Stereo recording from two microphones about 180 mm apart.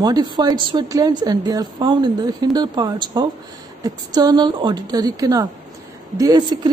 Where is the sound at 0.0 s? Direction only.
20° right (ahead or behind).